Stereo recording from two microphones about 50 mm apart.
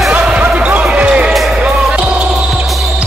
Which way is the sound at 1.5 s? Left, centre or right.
Right.